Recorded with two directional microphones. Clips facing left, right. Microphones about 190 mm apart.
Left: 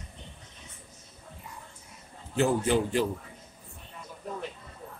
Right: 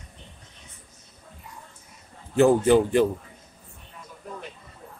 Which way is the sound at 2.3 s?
55° right (ahead or behind).